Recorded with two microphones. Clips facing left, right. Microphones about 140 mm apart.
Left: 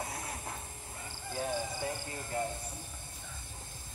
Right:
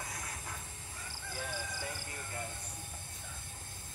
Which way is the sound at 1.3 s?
25° left (ahead or behind).